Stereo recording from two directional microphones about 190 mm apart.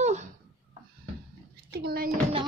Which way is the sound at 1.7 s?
55° right (ahead or behind).